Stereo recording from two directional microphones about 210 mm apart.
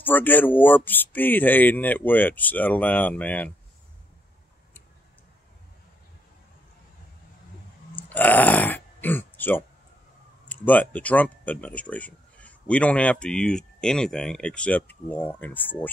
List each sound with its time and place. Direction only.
0.0 s speech: 10° left (ahead or behind)
7.9 s burping: 10° left (ahead or behind)
10.5 s speech: 10° left (ahead or behind)